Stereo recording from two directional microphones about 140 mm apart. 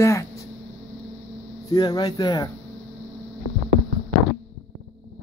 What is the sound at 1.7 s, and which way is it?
Speech, 30° left (ahead or behind).